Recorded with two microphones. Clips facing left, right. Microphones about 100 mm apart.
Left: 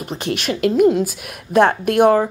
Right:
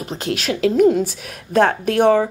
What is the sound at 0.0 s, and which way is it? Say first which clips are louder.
Speech: even; 5° left (ahead or behind).